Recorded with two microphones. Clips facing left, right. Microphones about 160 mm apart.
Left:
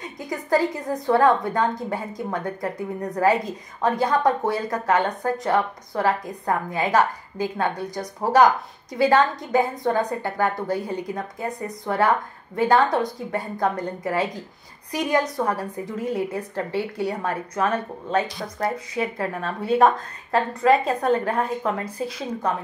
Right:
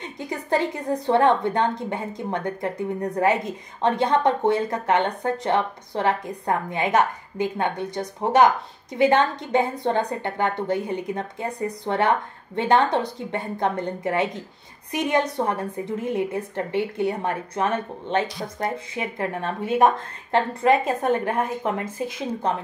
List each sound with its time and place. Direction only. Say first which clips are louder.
0.0 s a woman's voice: even; 25° right (ahead or behind)